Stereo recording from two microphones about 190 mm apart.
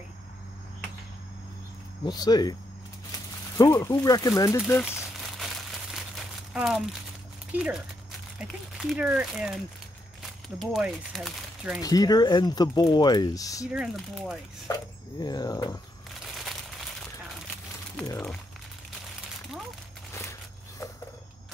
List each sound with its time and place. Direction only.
2.0 s speech: 20° left (ahead or behind)
3.5 s speech: 15° left (ahead or behind)
4.8 s crumpling: 5° right (ahead or behind)
7.5 s speech: 5° right (ahead or behind)
10.6 s speech: centre (ahead or behind)
11.8 s speech: 20° left (ahead or behind)
13.7 s speech: 5° right (ahead or behind)
15.1 s speech: 20° left (ahead or behind)
16.3 s a sound: centre (ahead or behind)
18.0 s speech: 15° left (ahead or behind)
20.1 s a sound: 15° left (ahead or behind)